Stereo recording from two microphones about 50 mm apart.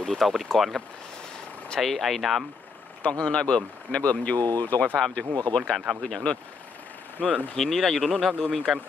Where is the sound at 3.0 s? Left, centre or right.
Left.